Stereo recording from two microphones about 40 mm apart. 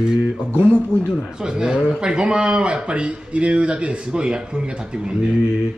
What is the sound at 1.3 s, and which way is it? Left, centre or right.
A man's voice, centre.